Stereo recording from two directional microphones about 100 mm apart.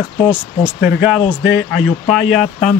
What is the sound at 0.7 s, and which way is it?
Speech, 5° right (ahead or behind).